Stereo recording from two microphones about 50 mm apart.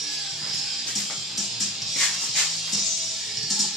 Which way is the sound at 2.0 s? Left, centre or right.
Centre.